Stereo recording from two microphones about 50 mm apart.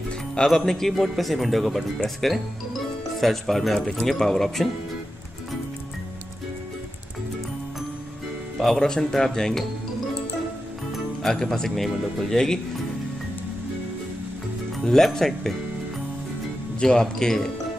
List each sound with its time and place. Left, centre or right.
0.5 s a man's voice: centre
8.5 s speech: centre
11.2 s speech: centre
14.9 s speech: centre
16.8 s speech: centre